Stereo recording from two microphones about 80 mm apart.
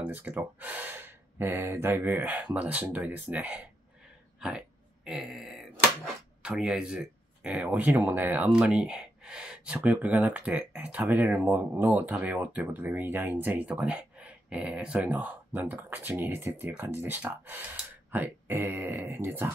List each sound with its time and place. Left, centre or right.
0.0 s speech: right
4.4 s a sound: centre
6.4 s speech: centre
8.5 s speech: centre
13.7 s a sound: centre
14.7 s speech: centre; by 19.5 s right